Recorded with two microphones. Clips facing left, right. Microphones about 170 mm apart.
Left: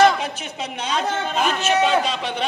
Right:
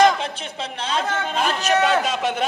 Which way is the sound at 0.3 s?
30° right (ahead or behind).